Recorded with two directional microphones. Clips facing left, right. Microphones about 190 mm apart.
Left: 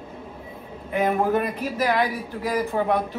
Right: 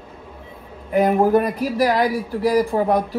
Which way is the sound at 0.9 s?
35° right (ahead or behind).